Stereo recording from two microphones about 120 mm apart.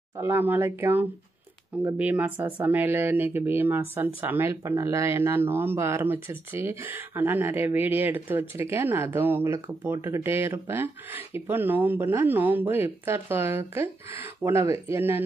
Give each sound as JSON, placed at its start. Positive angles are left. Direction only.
{"t": 0.2, "sound": "speech", "side_deg": -20}